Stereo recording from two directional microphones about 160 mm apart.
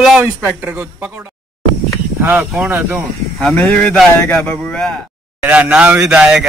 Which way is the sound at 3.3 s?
5° left (ahead or behind).